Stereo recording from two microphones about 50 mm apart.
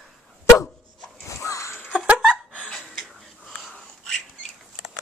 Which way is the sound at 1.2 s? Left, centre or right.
Left.